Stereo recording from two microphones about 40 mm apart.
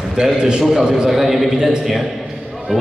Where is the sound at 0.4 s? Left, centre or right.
Centre.